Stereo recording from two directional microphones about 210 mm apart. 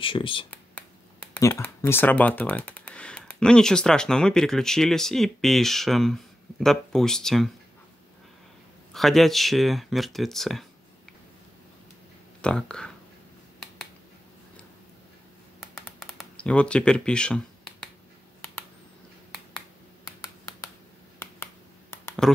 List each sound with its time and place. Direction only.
0.0 s speech: 25° left (ahead or behind)
1.3 s speech: 10° left (ahead or behind)
8.9 s speech: centre (ahead or behind)
12.4 s speech: 5° left (ahead or behind)
15.7 s a sound: centre (ahead or behind)
20.1 s finger snapping: 20° left (ahead or behind)
21.9 s a sound: 15° left (ahead or behind)